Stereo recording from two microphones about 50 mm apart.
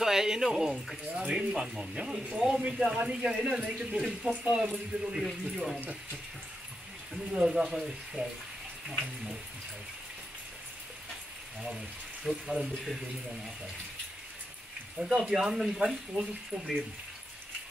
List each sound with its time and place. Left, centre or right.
0.0 s speech: centre
1.2 s speech: right
1.5 s speech: centre
5.1 s speech: centre
7.3 s speech: centre
7.7 s speech: centre
11.7 s speech: centre
15.0 s speech: centre